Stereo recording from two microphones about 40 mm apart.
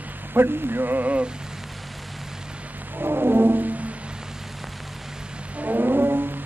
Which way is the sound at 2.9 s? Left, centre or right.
Right.